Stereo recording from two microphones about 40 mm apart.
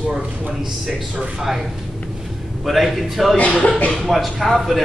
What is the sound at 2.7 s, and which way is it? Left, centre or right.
Speech, centre.